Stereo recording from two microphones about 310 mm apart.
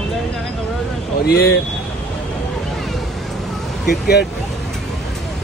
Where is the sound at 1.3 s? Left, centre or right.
Left.